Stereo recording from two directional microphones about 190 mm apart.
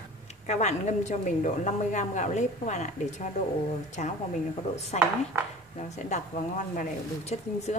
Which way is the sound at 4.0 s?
40° left (ahead or behind).